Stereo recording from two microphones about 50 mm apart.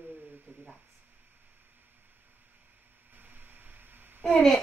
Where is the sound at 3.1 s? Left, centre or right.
Right.